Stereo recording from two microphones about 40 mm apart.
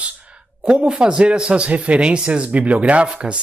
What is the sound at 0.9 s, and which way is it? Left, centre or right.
Speech, right.